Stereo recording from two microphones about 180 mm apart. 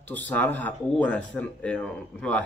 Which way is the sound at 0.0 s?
10° left (ahead or behind).